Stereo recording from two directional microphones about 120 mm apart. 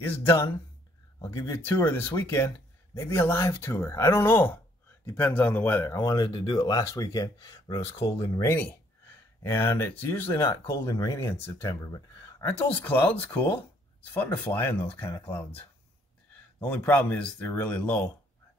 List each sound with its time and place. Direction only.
0.0 s speech: 20° left (ahead or behind)
5.9 s speech: 30° left (ahead or behind); by 8.3 s 50° left (ahead or behind)
8.4 s speech: 20° left (ahead or behind)
16.5 s speech: 15° left (ahead or behind)